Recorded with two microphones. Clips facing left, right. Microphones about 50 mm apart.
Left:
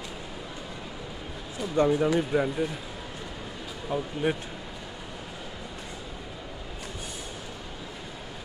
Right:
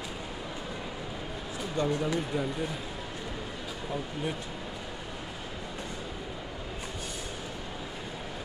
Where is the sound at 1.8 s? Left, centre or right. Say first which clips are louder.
Left 5 dB; centre.